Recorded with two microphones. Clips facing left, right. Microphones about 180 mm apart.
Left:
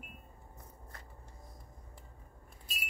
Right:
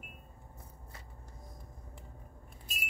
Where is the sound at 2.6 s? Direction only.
50° right (ahead or behind).